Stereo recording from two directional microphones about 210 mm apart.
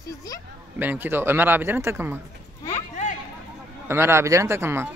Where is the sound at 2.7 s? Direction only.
35° left (ahead or behind).